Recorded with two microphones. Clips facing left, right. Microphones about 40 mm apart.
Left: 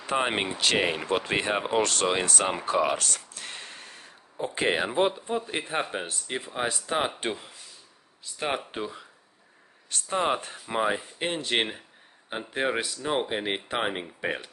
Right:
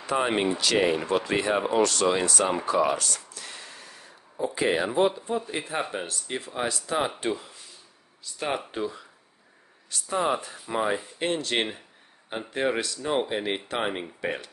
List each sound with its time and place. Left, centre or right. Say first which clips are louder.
0.0 s speech: right 2 dB; left
3.0 s a sound: even; left
4.6 s speech: right 1 dB; left
5.9 s speech: even; centre
9.8 s a sound: left 1 dB; left
10.1 s speech: even; left
10.7 s speech: even; centre